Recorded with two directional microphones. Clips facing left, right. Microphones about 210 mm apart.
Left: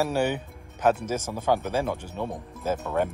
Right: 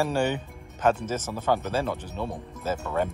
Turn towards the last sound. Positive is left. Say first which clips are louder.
# left 1 dB
turn(degrees=5)  # may be behind; listen again after turning